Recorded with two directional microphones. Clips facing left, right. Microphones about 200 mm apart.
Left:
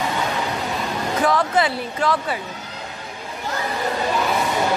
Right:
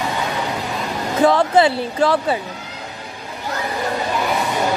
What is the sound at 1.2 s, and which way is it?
Speech, 30° right (ahead or behind).